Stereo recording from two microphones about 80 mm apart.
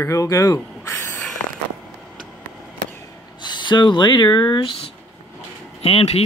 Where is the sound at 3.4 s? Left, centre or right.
Left.